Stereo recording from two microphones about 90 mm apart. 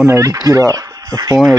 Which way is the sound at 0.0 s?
30° right (ahead or behind).